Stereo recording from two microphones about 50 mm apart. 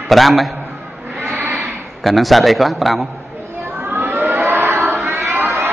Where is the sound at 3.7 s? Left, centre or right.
Right.